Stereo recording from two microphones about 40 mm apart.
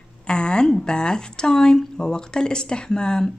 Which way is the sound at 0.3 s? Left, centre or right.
Left.